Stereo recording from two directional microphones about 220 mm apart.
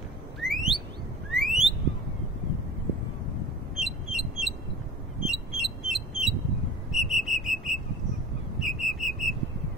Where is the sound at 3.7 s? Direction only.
Centre (ahead or behind).